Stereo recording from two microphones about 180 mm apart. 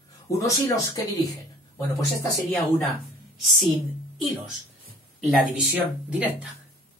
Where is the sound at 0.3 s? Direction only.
15° left (ahead or behind).